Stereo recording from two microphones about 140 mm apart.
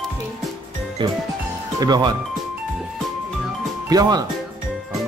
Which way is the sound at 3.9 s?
25° right (ahead or behind).